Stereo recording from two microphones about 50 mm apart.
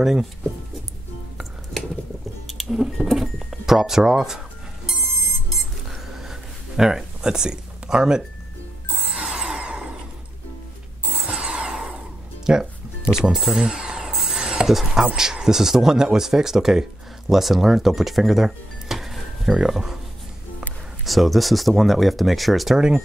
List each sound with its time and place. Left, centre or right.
0.0 s speech: centre
2.4 s music: centre
3.1 s speech: centre
5.9 s a sound: centre
6.8 s speech: centre
9.1 s a sound: centre
11.1 s a sound: right
12.5 s speech: centre
13.2 s speech: centre
13.6 s a sound: centre
15.0 s speech: centre
21.0 s speech: centre
22.8 s speech: centre